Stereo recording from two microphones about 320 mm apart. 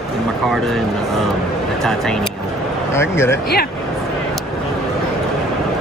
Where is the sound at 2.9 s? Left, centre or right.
Centre.